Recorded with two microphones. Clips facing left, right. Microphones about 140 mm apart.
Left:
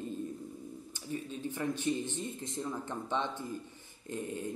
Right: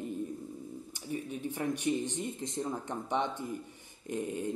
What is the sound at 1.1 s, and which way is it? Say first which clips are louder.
Speech: right 1 dB; 15° right (ahead or behind).